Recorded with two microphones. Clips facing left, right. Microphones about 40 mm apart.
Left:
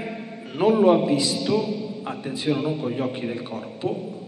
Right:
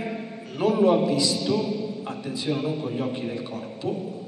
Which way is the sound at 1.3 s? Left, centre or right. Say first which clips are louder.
Left 1 dB; centre.